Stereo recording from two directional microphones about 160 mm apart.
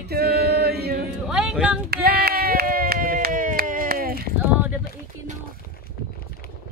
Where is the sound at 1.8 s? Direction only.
75° right (ahead or behind).